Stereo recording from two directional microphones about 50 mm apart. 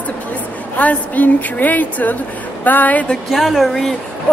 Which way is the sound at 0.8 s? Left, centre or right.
Left.